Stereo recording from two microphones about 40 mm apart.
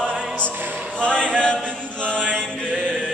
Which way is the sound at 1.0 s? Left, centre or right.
Left.